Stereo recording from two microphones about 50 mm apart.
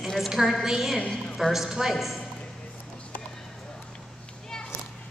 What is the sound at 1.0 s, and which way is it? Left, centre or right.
Speech, left.